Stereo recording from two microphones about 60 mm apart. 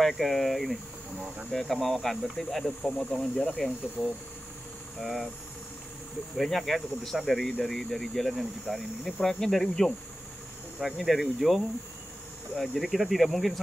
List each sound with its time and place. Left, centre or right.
0.0 s speech: centre
2.8 s speech: left
3.1 s speech: centre
6.3 s speech: centre